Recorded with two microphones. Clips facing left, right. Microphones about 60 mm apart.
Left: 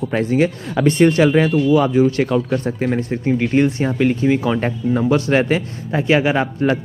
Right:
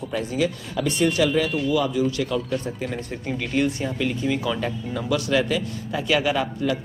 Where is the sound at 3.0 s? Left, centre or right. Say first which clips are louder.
Left 10 dB; left.